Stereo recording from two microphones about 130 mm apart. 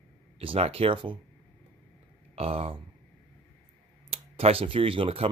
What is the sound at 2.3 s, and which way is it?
Speech, 50° right (ahead or behind).